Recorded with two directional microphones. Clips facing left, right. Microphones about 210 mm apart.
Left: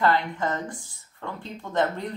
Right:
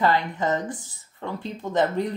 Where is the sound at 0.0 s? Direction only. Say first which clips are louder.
Right 1 dB; 20° right (ahead or behind).